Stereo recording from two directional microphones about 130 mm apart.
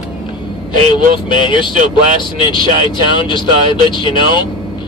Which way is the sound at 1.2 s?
35° left (ahead or behind).